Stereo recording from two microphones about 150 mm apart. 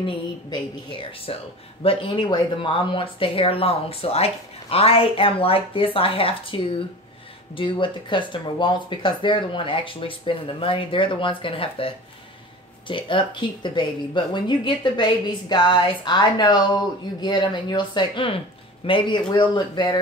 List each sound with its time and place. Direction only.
0.0 s speech: 35° left (ahead or behind)